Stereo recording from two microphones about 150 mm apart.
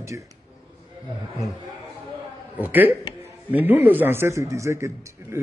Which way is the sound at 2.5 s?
10° right (ahead or behind).